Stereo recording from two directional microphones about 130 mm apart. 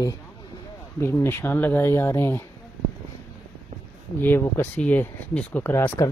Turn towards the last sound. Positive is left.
turn(degrees=20)  # may be behind; listen again after turning